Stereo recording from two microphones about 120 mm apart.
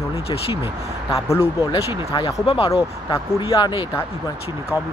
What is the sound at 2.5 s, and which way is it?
Speech, 50° left (ahead or behind).